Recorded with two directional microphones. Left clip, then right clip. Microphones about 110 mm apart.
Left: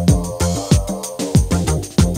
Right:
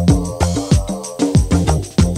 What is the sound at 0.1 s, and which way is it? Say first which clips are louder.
Music: right 3 dB; 35° left (ahead or behind).